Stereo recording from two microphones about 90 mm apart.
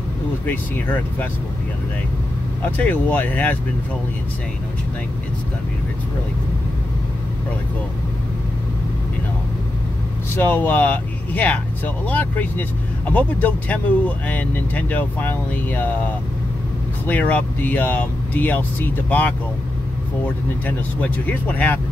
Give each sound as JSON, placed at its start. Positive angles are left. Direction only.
{"t": 0.5, "sound": "speech", "side_deg": 20}
{"t": 2.8, "sound": "speech", "side_deg": 20}
{"t": 10.3, "sound": "speech", "side_deg": 20}
{"t": 17.0, "sound": "speech", "side_deg": 20}
{"t": 20.6, "sound": "speech", "side_deg": 15}